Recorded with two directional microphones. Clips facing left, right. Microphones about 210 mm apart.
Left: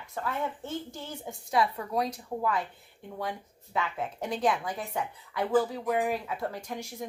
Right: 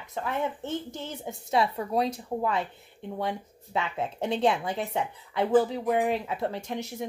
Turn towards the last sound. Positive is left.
turn(degrees=-25)  # may be behind; listen again after turning